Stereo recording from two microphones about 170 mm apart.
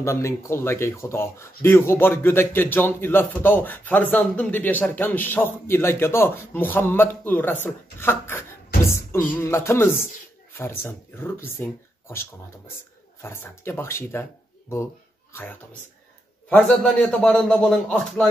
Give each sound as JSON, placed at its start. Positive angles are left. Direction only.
{"t": 0.0, "sound": "speech", "side_deg": 15}
{"t": 15.3, "sound": "speech", "side_deg": 10}